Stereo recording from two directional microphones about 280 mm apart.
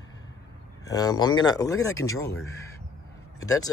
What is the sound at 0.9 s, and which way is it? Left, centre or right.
Speech, centre.